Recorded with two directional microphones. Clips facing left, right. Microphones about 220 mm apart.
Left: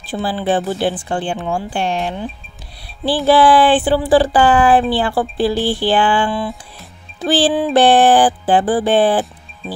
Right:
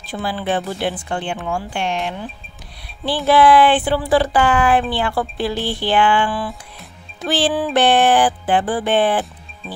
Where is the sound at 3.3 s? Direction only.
30° left (ahead or behind).